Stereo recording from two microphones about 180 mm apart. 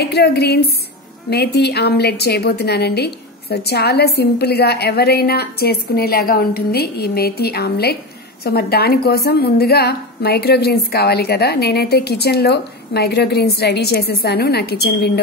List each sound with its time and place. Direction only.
0.0 s a woman's voice: 65° left (ahead or behind)